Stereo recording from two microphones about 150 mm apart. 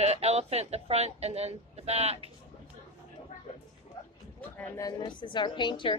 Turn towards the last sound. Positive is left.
turn(degrees=35)  # may be behind; listen again after turning